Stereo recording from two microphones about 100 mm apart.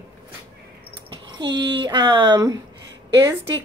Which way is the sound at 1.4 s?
50° right (ahead or behind).